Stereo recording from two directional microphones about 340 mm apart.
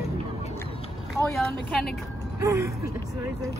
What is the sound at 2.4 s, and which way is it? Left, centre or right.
Speech, centre.